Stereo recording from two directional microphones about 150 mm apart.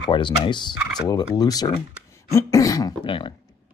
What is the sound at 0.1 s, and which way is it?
Speech, 30° left (ahead or behind).